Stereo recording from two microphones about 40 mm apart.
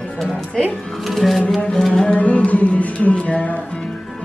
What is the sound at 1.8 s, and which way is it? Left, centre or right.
Music, centre.